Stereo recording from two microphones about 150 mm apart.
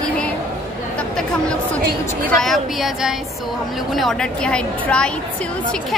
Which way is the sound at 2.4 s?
Centre (ahead or behind).